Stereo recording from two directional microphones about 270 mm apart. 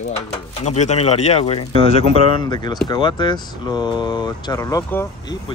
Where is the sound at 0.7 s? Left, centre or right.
Left.